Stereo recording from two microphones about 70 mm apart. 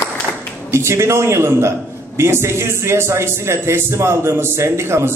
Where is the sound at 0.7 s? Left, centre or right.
Right.